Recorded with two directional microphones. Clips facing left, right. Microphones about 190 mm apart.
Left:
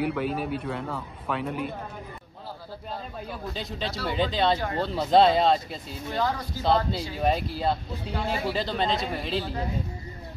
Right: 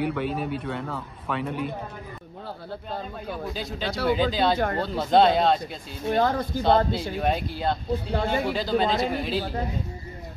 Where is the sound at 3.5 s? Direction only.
Centre (ahead or behind).